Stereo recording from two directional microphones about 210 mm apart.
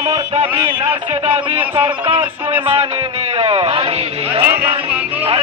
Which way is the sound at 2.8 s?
25° right (ahead or behind).